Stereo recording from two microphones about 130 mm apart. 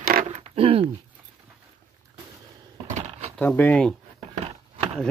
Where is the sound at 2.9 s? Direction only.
65° right (ahead or behind).